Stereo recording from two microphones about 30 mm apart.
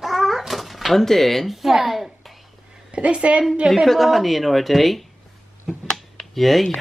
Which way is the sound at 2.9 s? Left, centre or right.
Right.